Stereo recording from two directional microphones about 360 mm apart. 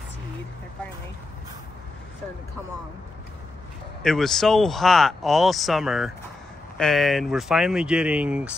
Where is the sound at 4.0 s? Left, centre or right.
Centre.